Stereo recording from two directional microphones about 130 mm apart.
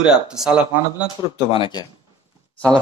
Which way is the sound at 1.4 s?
40° left (ahead or behind).